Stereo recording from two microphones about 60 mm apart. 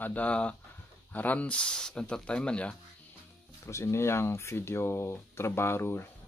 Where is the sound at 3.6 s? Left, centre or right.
Left.